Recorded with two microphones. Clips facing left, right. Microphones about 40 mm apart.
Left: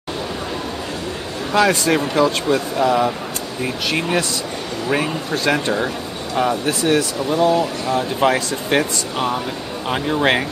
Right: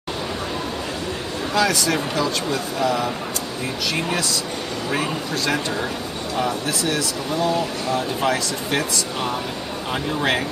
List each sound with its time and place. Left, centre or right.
1.5 s speech: left
4.8 s a man's voice: centre
5.3 s speech: left